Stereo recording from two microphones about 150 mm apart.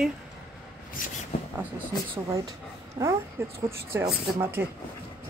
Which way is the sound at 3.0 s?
30° right (ahead or behind).